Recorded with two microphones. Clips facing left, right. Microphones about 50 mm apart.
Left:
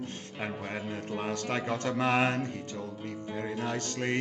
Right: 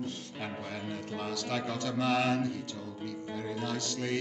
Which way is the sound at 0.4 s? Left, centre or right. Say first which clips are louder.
Left 5 dB; left.